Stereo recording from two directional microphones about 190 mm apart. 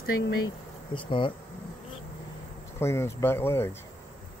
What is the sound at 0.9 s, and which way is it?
Speech, 25° left (ahead or behind).